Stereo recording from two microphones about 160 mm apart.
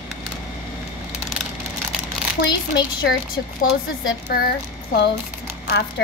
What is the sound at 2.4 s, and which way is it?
Speech, 90° left.